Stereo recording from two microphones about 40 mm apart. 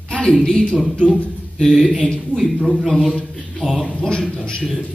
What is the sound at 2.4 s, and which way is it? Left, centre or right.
A man's voice, centre.